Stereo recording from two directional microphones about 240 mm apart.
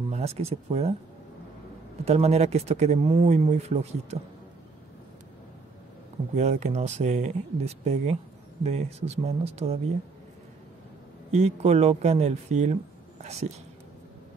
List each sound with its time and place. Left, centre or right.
0.1 s speech: right
2.0 s speech: right
6.3 s speech: right
11.3 s speech: right